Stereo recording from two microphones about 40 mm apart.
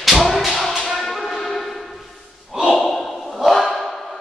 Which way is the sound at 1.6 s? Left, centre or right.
Centre.